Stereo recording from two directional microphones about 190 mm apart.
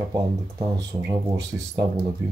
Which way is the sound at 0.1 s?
20° right (ahead or behind).